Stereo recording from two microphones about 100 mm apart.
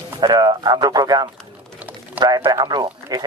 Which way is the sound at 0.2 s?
45° right (ahead or behind).